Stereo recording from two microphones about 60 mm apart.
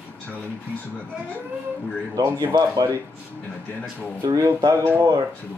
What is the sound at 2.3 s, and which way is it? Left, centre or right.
Speech, right.